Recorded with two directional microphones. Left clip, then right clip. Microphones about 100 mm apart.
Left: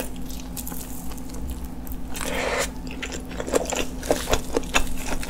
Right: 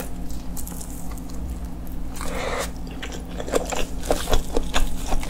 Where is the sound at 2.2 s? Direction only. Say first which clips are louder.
Left 2 dB; 25° left (ahead or behind).